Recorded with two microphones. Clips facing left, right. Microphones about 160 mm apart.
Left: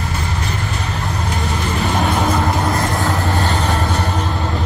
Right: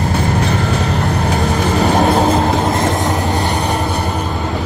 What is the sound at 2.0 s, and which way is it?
Vehicle, 35° right (ahead or behind).